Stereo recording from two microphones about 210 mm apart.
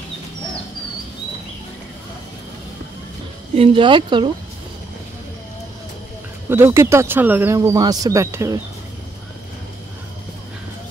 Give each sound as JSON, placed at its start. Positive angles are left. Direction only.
{"t": 3.5, "sound": "speech", "side_deg": -25}
{"t": 6.5, "sound": "speech", "side_deg": -15}